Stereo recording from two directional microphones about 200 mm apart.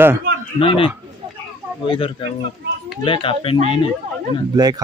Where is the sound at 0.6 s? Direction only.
25° left (ahead or behind).